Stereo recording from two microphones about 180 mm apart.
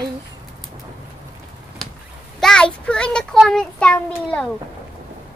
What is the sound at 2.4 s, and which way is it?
A child's voice, 5° left (ahead or behind).